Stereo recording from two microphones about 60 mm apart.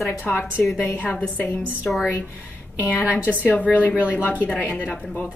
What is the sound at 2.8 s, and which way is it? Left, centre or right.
A woman's voice, left.